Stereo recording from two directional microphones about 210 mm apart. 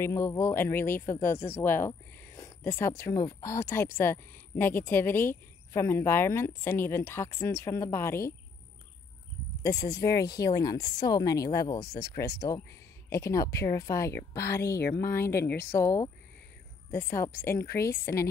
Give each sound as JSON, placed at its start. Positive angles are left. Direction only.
{"t": 0.0, "sound": "speech", "side_deg": 15}
{"t": 9.6, "sound": "speech", "side_deg": 15}
{"t": 14.1, "sound": "speech", "side_deg": 45}
{"t": 15.4, "sound": "speech", "side_deg": 10}